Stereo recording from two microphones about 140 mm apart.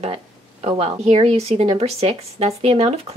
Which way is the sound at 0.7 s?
50° right (ahead or behind).